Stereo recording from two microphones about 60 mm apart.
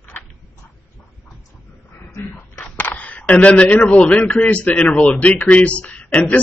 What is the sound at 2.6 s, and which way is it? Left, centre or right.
Cap gun, left.